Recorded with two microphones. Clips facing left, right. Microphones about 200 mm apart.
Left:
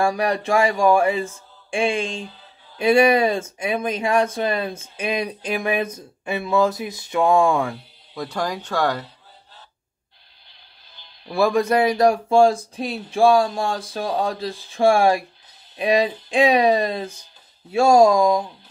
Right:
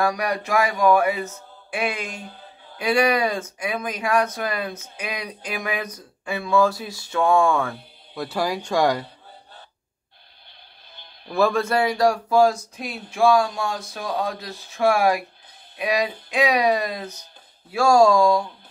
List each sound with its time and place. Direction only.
0.0 s speech: 30° left (ahead or behind)
8.1 s speech: 5° right (ahead or behind)
11.2 s speech: 10° left (ahead or behind)